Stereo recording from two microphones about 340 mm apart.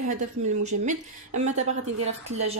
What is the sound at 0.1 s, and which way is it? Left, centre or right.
A woman's voice, right.